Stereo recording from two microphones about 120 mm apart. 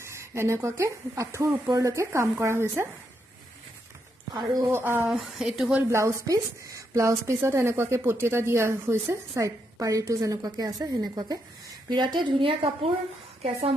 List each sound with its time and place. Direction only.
0.0 s a woman's voice: 25° right (ahead or behind)
4.6 s a woman's voice: 20° right (ahead or behind)
5.1 s speech: 5° right (ahead or behind)
5.8 s a woman's voice: 20° right (ahead or behind); by 13.7 s 50° right (ahead or behind)